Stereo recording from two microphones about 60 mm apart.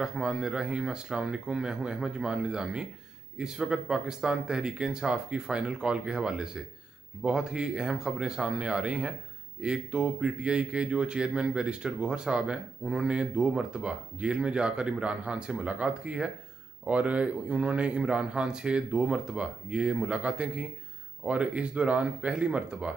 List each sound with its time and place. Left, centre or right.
0.0 s speech: centre